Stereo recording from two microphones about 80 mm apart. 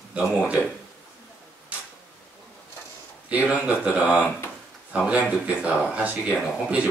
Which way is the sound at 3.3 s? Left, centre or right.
Centre.